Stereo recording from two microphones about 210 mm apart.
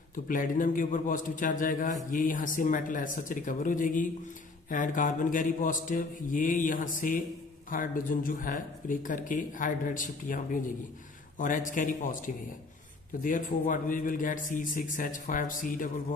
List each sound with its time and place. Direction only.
0.1 s speech: 40° left (ahead or behind)
13.2 s speech: 40° left (ahead or behind)